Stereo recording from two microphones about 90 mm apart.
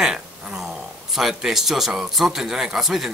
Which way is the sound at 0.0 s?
5° right (ahead or behind).